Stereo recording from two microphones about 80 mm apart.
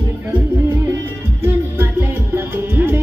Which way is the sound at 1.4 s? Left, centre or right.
Right.